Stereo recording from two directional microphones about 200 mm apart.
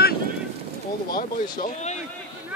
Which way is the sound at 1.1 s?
45° left (ahead or behind).